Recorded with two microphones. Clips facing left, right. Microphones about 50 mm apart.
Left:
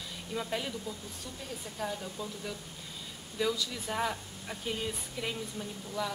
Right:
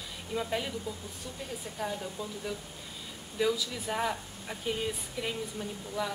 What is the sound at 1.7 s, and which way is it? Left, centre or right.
Speech, centre.